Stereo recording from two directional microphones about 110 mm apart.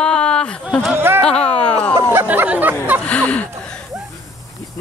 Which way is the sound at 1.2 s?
10° left (ahead or behind).